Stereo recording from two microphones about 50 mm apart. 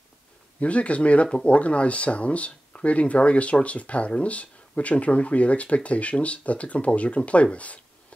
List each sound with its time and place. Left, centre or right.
0.6 s speech: left